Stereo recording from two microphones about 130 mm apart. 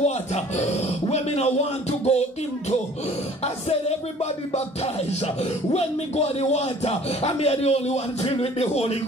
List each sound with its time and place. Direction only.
0.0 s a sound: 60° left (ahead or behind)
1.0 s music: 55° left (ahead or behind)
5.2 s speech: 55° left (ahead or behind)